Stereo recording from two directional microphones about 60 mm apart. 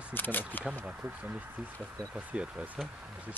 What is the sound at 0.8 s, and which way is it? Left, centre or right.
Speech, right.